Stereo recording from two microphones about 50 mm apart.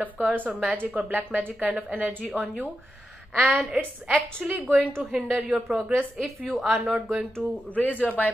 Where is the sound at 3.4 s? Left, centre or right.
Centre.